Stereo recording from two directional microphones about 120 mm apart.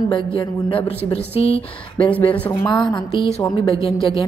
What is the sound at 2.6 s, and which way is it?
Speech, 35° left (ahead or behind).